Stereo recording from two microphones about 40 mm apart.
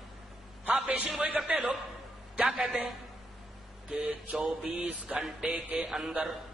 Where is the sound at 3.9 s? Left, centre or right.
Right.